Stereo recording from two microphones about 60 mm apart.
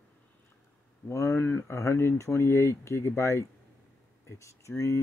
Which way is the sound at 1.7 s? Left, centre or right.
Left.